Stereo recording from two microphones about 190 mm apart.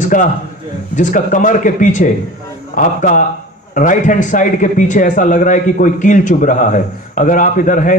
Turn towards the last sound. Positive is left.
turn(degrees=45)  # may be behind; listen again after turning